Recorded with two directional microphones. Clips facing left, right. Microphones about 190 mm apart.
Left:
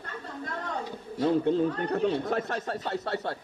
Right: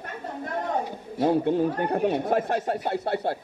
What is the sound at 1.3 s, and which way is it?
Speech, 60° right (ahead or behind).